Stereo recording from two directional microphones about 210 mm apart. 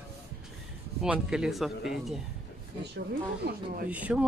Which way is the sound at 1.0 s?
5° right (ahead or behind).